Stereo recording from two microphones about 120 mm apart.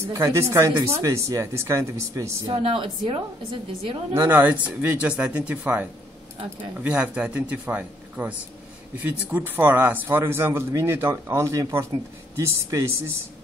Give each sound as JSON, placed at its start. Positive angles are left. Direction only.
{"t": 0.1, "sound": "a man's voice", "side_deg": -25}
{"t": 2.5, "sound": "a woman's voice", "side_deg": -50}
{"t": 4.1, "sound": "a man's voice", "side_deg": -15}